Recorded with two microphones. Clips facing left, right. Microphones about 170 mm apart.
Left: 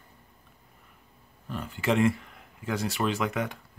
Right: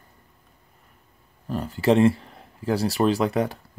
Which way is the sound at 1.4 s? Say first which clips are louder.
Right 7 dB; 40° right (ahead or behind).